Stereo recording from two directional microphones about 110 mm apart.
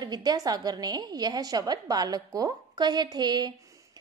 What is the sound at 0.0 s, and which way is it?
A woman's voice, 40° right (ahead or behind).